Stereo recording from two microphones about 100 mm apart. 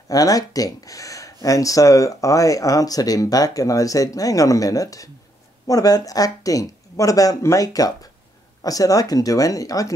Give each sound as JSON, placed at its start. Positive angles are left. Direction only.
{"t": 0.1, "sound": "speech", "side_deg": 35}